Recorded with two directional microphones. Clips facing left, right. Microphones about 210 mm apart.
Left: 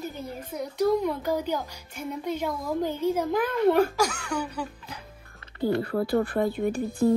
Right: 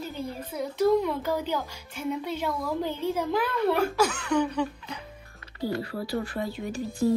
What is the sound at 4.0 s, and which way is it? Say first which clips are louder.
Speech: right 3 dB; 10° left (ahead or behind).